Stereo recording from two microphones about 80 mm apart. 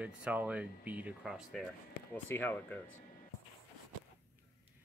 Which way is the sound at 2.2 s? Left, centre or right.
Left.